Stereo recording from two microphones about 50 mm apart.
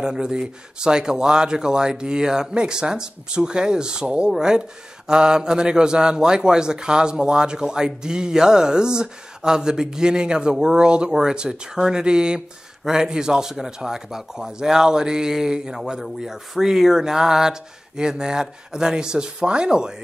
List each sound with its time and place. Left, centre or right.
0.0 s speech: centre